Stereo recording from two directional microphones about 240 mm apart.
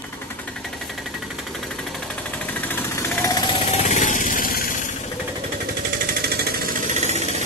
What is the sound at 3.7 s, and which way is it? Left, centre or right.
Vehicle, left.